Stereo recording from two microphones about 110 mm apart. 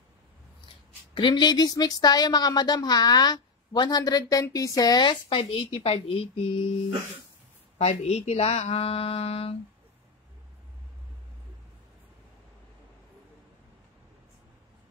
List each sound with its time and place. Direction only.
1.1 s speech: 45° left (ahead or behind); by 6.5 s 60° left (ahead or behind)
7.7 s speech: 75° left (ahead or behind)